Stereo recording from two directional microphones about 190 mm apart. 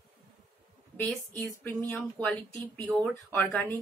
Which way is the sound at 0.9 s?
10° left (ahead or behind).